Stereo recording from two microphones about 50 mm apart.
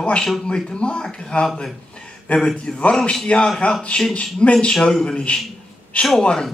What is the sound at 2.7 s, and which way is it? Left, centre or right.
Speech, centre.